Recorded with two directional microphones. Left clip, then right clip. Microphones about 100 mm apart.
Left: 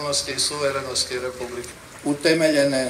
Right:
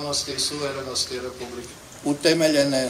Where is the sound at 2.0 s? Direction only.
15° right (ahead or behind).